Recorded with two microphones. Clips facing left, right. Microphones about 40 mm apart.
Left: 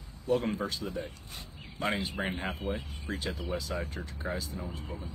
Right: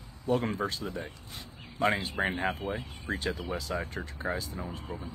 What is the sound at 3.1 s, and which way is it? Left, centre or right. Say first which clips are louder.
Speech: right 2 dB; right.